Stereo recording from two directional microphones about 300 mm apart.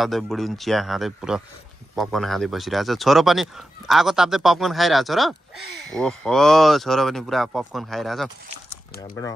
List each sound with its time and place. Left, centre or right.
0.0 s speech: centre